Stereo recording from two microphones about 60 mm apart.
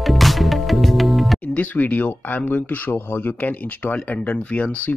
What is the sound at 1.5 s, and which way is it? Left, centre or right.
Speech, left.